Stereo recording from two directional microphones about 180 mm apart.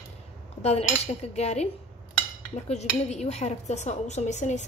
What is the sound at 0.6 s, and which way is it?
Speech, 35° left (ahead or behind).